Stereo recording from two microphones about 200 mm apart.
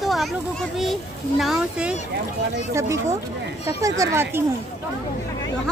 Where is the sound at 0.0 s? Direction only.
Centre (ahead or behind).